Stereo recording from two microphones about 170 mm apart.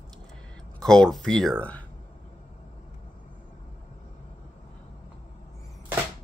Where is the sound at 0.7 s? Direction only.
5° left (ahead or behind).